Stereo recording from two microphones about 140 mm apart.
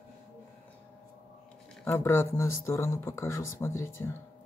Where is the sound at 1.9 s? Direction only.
20° left (ahead or behind).